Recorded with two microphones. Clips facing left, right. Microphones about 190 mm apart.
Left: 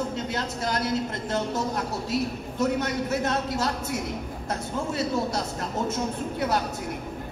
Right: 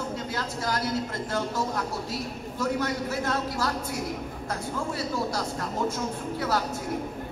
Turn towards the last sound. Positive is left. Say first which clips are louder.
# left 2 dB
turn(degrees=20)  # may be behind; listen again after turning